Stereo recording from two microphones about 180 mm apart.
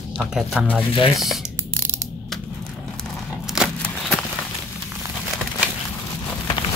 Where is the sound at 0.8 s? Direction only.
30° left (ahead or behind).